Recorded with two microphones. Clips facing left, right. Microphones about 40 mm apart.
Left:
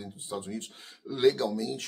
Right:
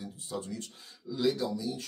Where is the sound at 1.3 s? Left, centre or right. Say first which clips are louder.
Left 3 dB; left.